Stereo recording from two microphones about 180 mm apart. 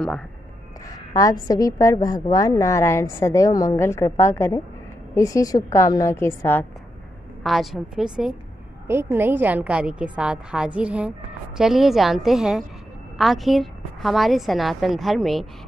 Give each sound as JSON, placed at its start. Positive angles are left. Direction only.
{"t": 1.1, "sound": "a woman's voice", "side_deg": 20}
{"t": 7.4, "sound": "a woman's voice", "side_deg": 0}